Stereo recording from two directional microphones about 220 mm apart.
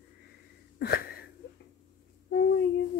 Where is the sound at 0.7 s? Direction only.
45° left (ahead or behind).